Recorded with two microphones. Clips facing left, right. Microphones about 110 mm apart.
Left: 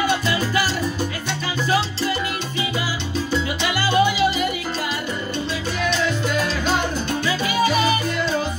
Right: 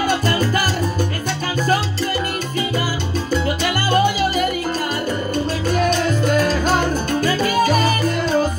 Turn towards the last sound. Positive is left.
turn(degrees=-45)  # may be behind; listen again after turning